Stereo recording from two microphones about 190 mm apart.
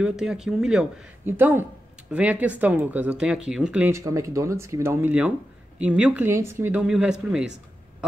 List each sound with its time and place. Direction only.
0.0 s speech: 5° right (ahead or behind)